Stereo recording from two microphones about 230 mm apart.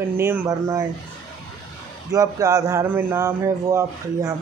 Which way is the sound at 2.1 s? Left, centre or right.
Centre.